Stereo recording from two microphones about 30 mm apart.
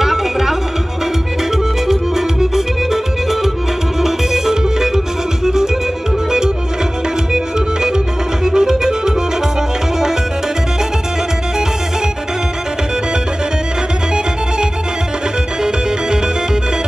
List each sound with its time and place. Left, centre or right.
0.0 s music: centre
1.9 s music: centre
7.3 s organ: right
8.5 s music: centre